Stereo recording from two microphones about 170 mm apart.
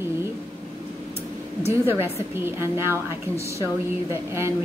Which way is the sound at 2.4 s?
15° right (ahead or behind).